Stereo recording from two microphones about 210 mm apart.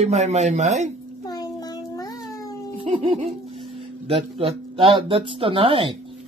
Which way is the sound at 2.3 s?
15° left (ahead or behind).